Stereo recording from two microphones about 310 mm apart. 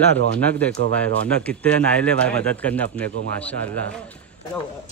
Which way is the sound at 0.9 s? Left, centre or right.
Centre.